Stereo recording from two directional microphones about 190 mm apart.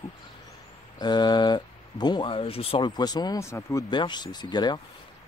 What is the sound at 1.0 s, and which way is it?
A man's voice, 25° left (ahead or behind).